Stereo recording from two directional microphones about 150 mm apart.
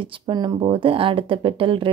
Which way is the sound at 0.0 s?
30° right (ahead or behind).